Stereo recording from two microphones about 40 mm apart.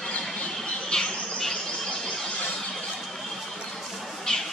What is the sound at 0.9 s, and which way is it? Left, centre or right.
Bird, centre.